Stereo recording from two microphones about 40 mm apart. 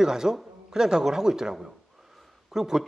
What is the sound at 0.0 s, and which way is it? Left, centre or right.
A man's voice, centre.